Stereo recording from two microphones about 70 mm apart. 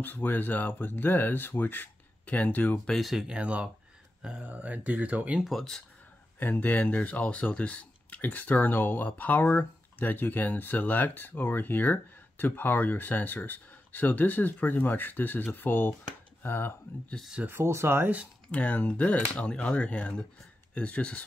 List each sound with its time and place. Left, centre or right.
0.0 s speech: left
2.9 s speech: centre
3.3 s speech: centre
5.4 s speech: centre
6.4 s speech: left
17.5 s speech: right
18.5 s speech: left